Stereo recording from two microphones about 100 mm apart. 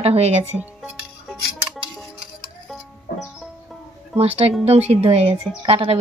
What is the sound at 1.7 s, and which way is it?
Music, centre (ahead or behind).